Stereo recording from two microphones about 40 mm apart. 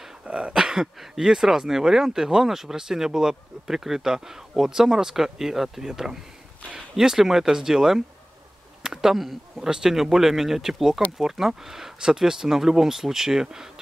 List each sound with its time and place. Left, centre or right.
0.3 s throat clearing: right
0.9 s speech: centre
8.8 s a sound: centre
9.6 s speech: centre